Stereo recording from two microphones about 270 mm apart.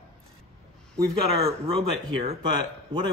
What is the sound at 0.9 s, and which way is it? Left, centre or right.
Speech, right.